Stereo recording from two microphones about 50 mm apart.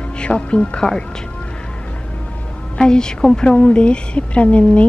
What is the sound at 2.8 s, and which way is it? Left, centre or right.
A woman's voice, centre.